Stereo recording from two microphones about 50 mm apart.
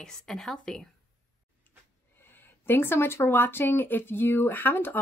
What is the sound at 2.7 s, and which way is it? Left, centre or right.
Speech, left.